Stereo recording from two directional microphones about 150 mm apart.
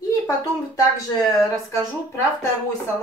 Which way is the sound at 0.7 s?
20° left (ahead or behind).